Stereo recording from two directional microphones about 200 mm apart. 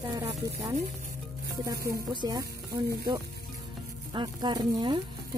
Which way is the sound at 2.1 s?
20° right (ahead or behind).